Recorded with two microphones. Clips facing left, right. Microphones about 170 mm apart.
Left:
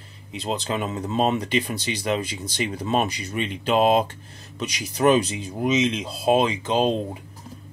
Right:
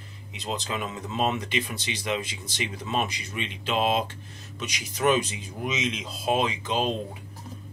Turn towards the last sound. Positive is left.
turn(degrees=35)  # may be behind; listen again after turning